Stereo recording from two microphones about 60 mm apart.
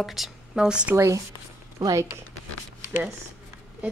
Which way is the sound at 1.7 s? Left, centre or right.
Right.